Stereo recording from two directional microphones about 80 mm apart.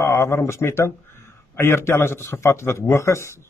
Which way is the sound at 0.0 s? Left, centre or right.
Left.